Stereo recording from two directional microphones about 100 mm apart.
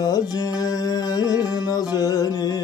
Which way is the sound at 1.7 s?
40° left (ahead or behind).